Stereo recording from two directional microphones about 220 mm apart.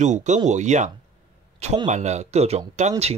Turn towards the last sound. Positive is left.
turn(degrees=-30)  # may be behind; listen again after turning